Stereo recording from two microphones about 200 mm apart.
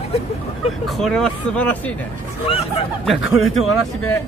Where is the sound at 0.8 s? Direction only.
Centre (ahead or behind).